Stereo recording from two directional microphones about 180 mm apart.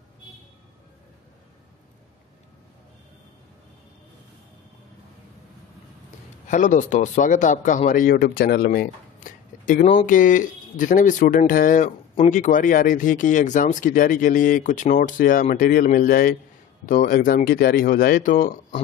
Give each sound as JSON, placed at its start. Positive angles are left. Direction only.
{"t": 6.4, "sound": "speech", "side_deg": 45}